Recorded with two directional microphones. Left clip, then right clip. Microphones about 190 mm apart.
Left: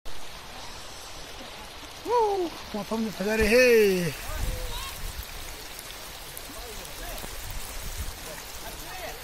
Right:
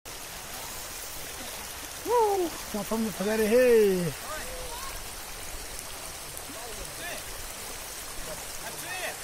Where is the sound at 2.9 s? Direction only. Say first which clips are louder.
Left 1 dB; 10° left (ahead or behind).